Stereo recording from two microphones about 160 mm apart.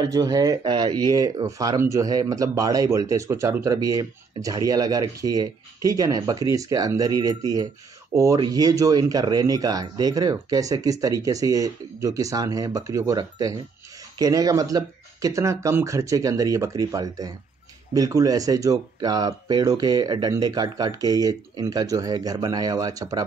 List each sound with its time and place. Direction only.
0.0 s speech: 25° right (ahead or behind)